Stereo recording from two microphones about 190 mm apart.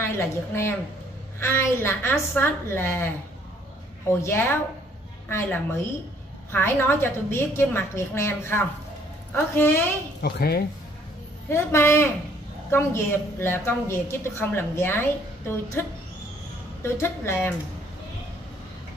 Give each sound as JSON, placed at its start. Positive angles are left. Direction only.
{"t": 0.0, "sound": "a woman's voice", "side_deg": 15}
{"t": 4.2, "sound": "a woman's voice", "side_deg": 15}
{"t": 10.2, "sound": "speech", "side_deg": 55}
{"t": 11.4, "sound": "a woman's voice", "side_deg": 15}
{"t": 16.8, "sound": "a woman's voice", "side_deg": 15}